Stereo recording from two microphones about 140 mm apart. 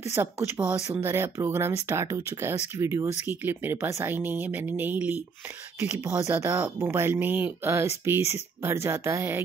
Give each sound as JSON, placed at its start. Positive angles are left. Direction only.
{"t": 0.0, "sound": "speech", "side_deg": -20}